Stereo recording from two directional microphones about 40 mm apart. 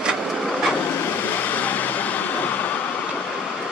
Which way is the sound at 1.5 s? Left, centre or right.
Left.